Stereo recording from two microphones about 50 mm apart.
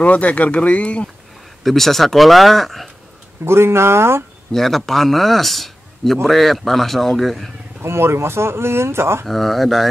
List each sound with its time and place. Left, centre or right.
0.0 s speech: left
1.6 s speech: centre
3.4 s speech: right
4.5 s a man's voice: centre
7.8 s speech: right
9.2 s speech: centre